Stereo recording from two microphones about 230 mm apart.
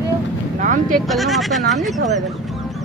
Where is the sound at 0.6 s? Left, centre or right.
Right.